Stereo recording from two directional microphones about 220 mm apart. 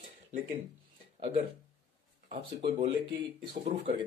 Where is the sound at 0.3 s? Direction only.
35° right (ahead or behind).